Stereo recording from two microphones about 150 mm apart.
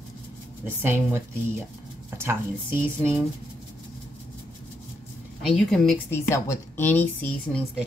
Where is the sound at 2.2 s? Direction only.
15° right (ahead or behind).